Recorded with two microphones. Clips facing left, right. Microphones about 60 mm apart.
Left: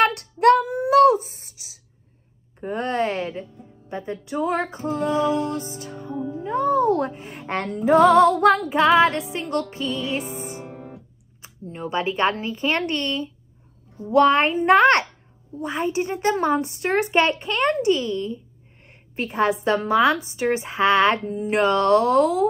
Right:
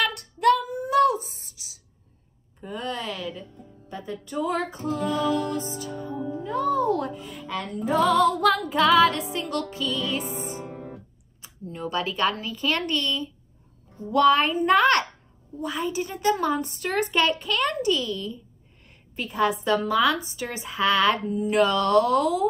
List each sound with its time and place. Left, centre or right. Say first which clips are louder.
0.0 s child singing: left 5 dB; left
0.7 s a sound: left 6 dB; left
2.6 s speech: left 8 dB; left
5.8 s music: right 1 dB; left
6.1 s music: left 4 dB; centre
6.4 s music: left 4 dB; left
8.6 s speech: left 2 dB; left
10.7 s music: even; centre
11.4 s a woman's voice: left 1 dB; left